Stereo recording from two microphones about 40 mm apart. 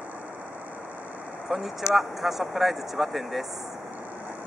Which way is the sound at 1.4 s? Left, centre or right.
Centre.